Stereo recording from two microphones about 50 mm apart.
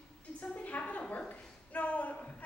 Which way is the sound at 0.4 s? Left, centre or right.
Left.